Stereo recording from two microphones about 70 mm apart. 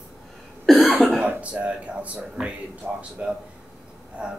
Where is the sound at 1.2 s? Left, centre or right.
Right.